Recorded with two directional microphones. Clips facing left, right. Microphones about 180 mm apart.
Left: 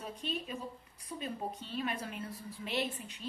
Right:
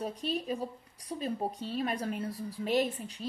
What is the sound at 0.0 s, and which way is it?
A woman's voice, 35° right (ahead or behind).